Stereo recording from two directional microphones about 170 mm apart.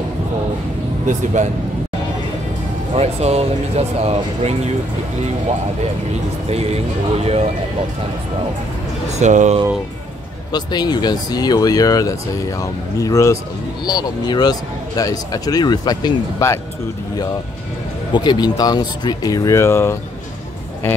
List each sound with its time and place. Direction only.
1.0 s speech: 45° right (ahead or behind)
3.0 s speech: 40° right (ahead or behind)
6.5 s speech: 40° right (ahead or behind)
9.2 s speech: 45° right (ahead or behind)
10.5 s speech: 25° left (ahead or behind)
18.1 s speech: 25° left (ahead or behind)